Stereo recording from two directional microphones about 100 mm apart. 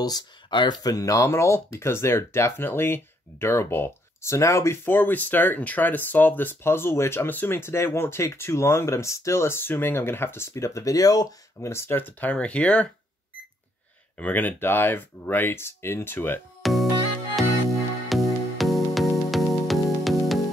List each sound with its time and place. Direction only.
0.0 s speech: 45° left (ahead or behind)
11.7 s speech: 20° left (ahead or behind)
14.1 s speech: 15° left (ahead or behind)
16.6 s music: centre (ahead or behind)
18.0 s music: centre (ahead or behind)